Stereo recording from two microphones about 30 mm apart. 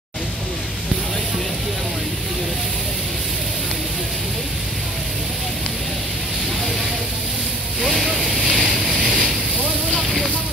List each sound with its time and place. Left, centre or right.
7.9 s vehicle: right